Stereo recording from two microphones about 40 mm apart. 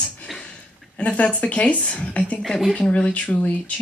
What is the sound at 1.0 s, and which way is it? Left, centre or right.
A woman's voice, left.